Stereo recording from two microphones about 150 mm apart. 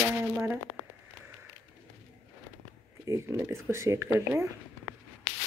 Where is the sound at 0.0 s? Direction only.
10° right (ahead or behind).